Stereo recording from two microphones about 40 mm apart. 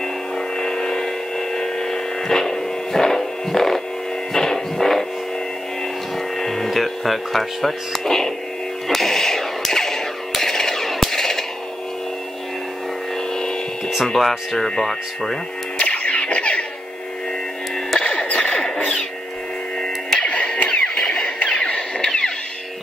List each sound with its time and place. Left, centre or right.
0.6 s a sound: centre
4.3 s music: centre
6.1 s a sound: centre
14.0 s speech: centre
15.8 s music: left
18.0 s music: left
19.8 s music: left
21.0 s music: centre
21.4 s music: left